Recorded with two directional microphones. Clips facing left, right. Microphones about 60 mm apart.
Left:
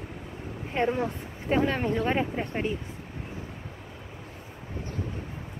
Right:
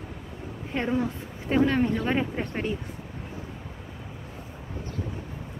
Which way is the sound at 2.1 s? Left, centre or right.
Centre.